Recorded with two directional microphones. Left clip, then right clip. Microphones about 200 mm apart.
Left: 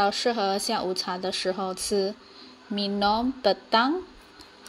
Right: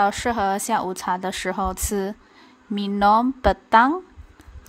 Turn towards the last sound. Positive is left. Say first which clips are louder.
# right 6 dB
turn(degrees=-50)  # may be behind; listen again after turning